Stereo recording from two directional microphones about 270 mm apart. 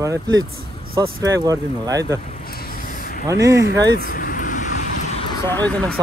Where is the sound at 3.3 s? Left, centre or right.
Centre.